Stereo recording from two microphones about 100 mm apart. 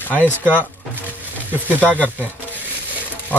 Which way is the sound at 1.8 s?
15° left (ahead or behind).